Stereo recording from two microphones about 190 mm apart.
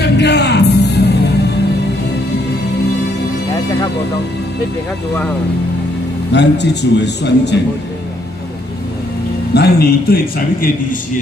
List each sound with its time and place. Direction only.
0.0 s music: 60° left (ahead or behind)
6.3 s a man's voice: 65° left (ahead or behind)
9.5 s a man's voice: 55° left (ahead or behind)